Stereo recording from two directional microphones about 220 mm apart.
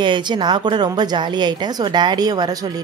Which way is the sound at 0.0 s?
20° right (ahead or behind).